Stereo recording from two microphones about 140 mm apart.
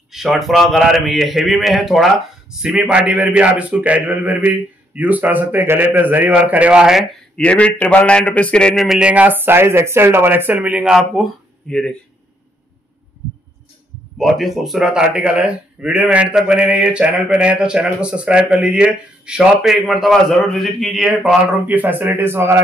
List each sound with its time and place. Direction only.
0.1 s a man's voice: centre (ahead or behind)
7.3 s speech: 10° left (ahead or behind)
14.1 s speech: centre (ahead or behind)
21.6 s a man's voice: 15° right (ahead or behind)